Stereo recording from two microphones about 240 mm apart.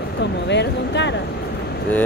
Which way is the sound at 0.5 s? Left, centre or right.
Left.